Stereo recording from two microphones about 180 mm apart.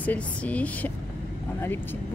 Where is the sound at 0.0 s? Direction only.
10° left (ahead or behind).